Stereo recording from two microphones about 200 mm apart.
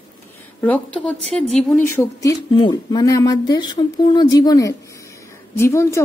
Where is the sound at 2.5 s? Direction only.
25° left (ahead or behind).